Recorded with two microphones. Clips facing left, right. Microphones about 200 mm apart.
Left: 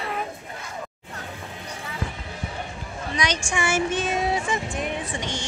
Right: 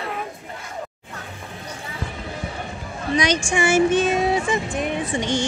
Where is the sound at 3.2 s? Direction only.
25° right (ahead or behind).